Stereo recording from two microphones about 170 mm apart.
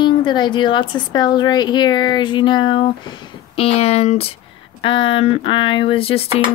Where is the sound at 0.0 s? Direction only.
25° left (ahead or behind).